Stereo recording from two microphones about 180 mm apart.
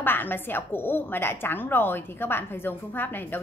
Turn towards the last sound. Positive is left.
turn(degrees=10)  # may be behind; listen again after turning